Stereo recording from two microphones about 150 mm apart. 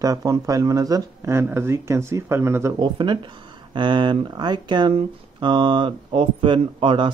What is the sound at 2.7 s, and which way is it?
Speech, 30° right (ahead or behind).